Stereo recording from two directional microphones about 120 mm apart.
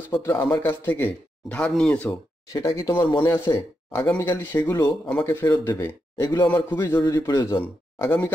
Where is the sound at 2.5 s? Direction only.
25° left (ahead or behind).